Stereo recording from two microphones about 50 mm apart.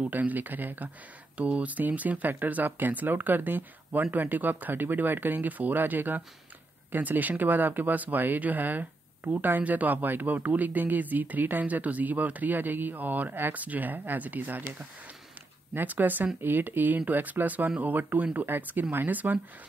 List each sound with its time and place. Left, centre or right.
0.1 s speech: right
15.7 s speech: right